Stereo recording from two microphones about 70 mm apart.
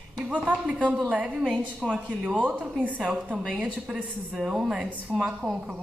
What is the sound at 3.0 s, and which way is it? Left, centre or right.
A woman's voice, centre.